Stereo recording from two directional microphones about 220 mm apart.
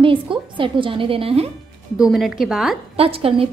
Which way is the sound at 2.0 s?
Centre (ahead or behind).